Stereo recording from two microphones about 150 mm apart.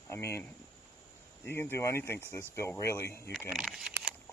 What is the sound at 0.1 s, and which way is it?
Speech, 20° left (ahead or behind).